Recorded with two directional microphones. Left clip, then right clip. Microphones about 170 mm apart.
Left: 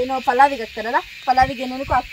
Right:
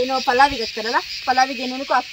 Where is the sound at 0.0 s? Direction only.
10° left (ahead or behind).